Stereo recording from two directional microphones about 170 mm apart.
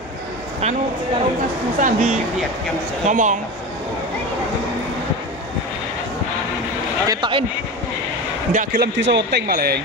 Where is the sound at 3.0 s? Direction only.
45° right (ahead or behind).